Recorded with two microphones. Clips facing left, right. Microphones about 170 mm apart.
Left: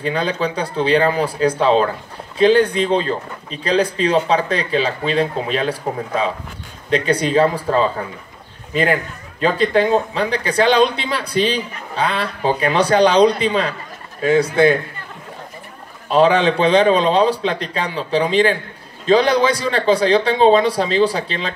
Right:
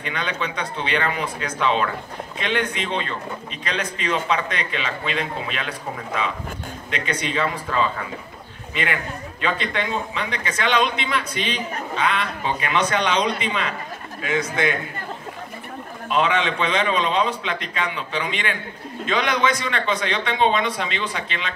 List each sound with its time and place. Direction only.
0.0 s a man's voice: 35° left (ahead or behind)
16.1 s a man's voice: 35° left (ahead or behind)